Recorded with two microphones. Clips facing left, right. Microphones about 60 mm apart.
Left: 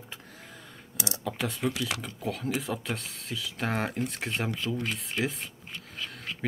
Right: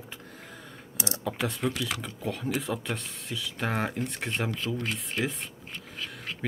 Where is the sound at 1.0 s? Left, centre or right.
Right.